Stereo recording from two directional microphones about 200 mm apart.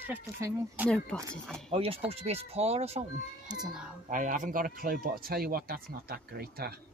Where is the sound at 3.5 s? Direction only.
5° right (ahead or behind).